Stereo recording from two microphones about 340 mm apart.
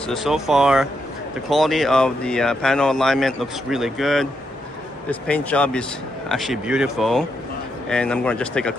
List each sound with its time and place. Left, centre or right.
0.1 s speech: centre